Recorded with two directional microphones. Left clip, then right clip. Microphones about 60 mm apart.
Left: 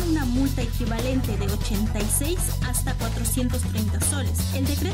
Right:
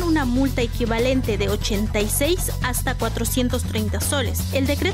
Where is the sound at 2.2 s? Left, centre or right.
Right.